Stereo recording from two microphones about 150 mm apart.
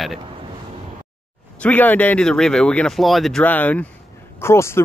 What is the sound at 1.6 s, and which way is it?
Speech, 10° left (ahead or behind).